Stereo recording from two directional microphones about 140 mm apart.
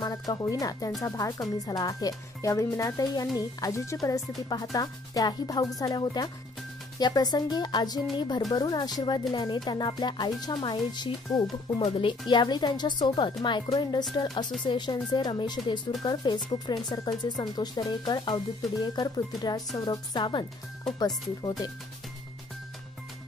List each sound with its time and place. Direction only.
0.0 s speech: 25° left (ahead or behind)